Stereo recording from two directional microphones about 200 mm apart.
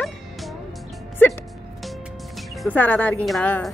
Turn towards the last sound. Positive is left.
turn(degrees=5)  # may be behind; listen again after turning